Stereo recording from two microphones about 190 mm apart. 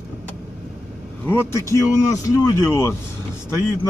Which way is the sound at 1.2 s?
15° left (ahead or behind).